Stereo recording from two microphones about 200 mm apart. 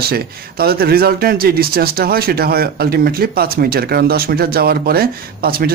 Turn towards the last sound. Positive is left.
turn(degrees=-50)  # may be behind; listen again after turning